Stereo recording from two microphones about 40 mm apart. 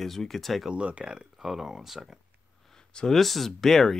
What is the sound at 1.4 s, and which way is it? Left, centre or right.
Speech, centre.